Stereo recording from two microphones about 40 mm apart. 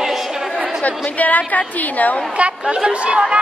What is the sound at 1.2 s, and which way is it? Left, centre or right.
A woman's voice, left.